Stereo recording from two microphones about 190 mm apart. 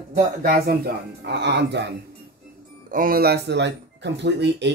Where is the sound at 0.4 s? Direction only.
50° right (ahead or behind).